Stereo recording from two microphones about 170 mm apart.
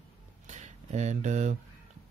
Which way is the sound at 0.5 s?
45° right (ahead or behind).